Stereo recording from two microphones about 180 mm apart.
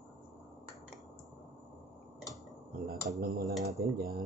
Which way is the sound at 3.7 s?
60° right (ahead or behind).